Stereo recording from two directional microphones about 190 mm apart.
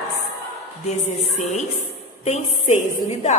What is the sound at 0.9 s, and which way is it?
A woman's voice, 40° left (ahead or behind).